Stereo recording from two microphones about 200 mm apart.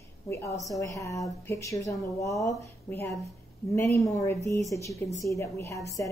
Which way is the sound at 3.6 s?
15° left (ahead or behind).